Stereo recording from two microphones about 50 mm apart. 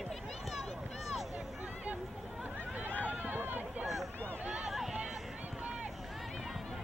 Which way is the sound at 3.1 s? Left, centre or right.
Right.